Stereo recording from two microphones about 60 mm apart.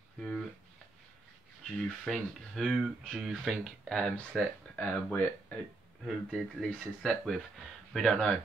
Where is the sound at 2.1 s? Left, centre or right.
Centre.